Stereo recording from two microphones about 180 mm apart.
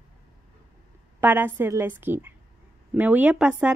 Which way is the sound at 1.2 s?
10° right (ahead or behind).